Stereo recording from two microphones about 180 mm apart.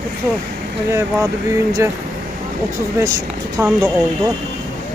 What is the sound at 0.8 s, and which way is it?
Speech, 15° right (ahead or behind).